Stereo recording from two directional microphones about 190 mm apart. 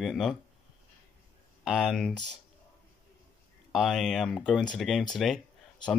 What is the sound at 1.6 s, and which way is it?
Speech, centre (ahead or behind).